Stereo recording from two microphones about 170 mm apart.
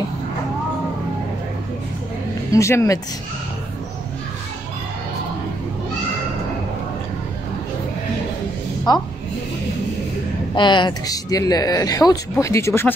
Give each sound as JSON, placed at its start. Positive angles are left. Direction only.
{"t": 2.5, "sound": "speech", "side_deg": 20}
{"t": 8.9, "sound": "speech", "side_deg": 25}
{"t": 10.5, "sound": "speech", "side_deg": 25}